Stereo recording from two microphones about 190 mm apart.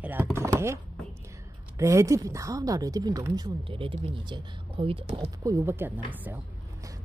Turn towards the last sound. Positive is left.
turn(degrees=-10)  # may be behind; listen again after turning